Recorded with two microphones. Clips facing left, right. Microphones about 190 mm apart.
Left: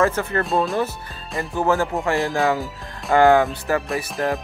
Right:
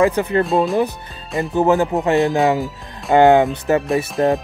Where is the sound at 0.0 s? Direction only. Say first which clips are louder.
Right 4 dB; 15° right (ahead or behind).